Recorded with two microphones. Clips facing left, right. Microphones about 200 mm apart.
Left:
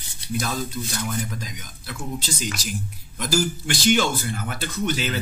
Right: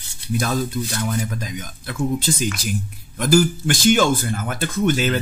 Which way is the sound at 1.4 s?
55° right (ahead or behind).